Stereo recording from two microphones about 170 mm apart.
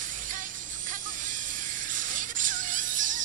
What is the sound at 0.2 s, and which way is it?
Vehicle, 50° right (ahead or behind).